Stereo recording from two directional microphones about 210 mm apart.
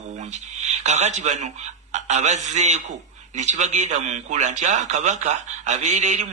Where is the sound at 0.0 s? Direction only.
35° right (ahead or behind).